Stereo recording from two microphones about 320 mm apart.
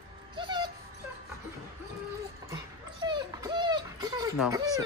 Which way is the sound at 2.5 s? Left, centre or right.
Centre.